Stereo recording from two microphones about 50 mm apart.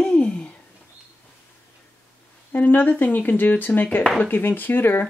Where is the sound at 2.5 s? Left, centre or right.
Left.